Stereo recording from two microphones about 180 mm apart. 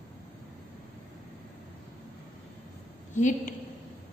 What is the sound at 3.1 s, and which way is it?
Speech, 45° left (ahead or behind).